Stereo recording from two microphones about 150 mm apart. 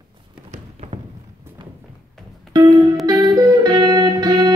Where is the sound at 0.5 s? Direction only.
45° right (ahead or behind).